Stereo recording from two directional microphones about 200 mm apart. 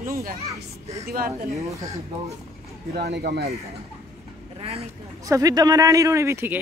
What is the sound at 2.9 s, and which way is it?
Speech, 55° right (ahead or behind).